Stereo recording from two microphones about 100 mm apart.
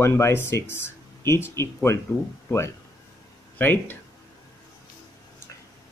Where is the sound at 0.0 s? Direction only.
25° left (ahead or behind).